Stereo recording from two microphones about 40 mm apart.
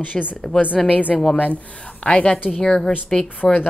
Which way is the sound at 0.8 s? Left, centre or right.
Centre.